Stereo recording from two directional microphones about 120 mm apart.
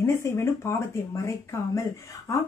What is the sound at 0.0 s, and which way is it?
Speech, 20° left (ahead or behind).